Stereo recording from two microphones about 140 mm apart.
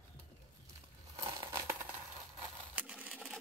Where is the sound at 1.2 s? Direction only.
20° right (ahead or behind).